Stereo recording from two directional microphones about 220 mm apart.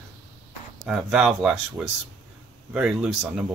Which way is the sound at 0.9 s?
5° right (ahead or behind).